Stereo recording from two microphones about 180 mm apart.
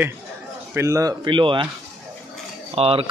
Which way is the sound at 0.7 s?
15° right (ahead or behind).